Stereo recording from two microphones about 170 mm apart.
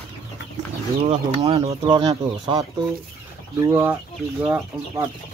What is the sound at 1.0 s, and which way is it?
Speech, 35° right (ahead or behind).